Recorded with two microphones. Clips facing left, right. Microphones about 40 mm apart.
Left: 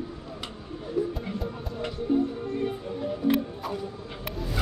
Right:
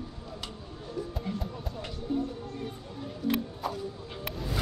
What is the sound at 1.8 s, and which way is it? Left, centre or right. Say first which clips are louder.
Music: left 7 dB; left.